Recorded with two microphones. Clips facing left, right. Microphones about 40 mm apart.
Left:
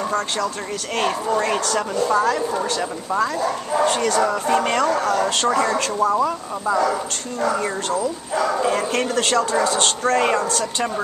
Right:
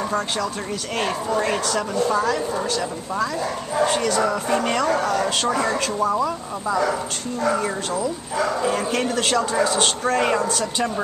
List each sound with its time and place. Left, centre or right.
0.9 s speech: centre
2.8 s speech: centre
3.8 s speech: centre